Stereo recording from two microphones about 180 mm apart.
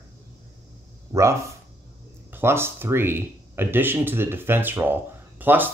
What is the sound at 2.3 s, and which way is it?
Speech, 15° right (ahead or behind).